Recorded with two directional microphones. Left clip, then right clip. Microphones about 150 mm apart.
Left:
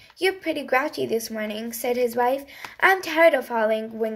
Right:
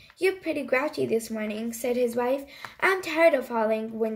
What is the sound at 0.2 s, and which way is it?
A woman's voice, 20° right (ahead or behind).